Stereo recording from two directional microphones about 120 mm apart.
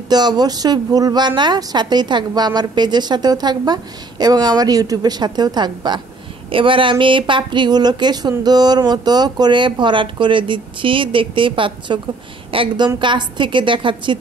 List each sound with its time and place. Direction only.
0.1 s a woman's voice: 35° right (ahead or behind)